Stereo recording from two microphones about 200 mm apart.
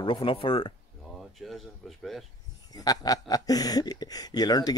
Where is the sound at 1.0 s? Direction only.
Centre (ahead or behind).